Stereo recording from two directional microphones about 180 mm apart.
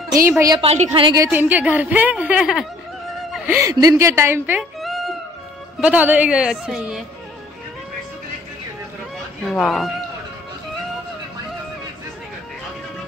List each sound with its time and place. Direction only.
0.1 s a woman's voice: 20° right (ahead or behind)
0.6 s a woman's voice: 35° right (ahead or behind)
1.2 s a woman's voice: 10° right (ahead or behind)
4.7 s cat: centre (ahead or behind)
5.8 s a woman's voice: 5° right (ahead or behind)
9.5 s a woman's voice: centre (ahead or behind)